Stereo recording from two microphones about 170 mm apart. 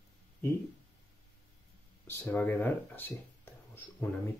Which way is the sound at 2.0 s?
10° left (ahead or behind).